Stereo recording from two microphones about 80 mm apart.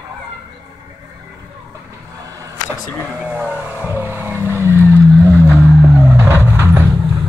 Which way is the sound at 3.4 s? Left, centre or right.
Right.